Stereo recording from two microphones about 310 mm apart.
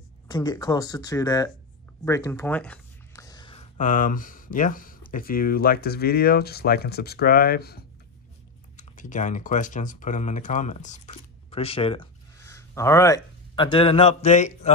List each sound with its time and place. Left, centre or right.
0.3 s speech: centre